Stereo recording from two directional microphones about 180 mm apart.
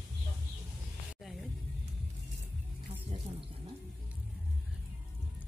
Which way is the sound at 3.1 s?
35° right (ahead or behind).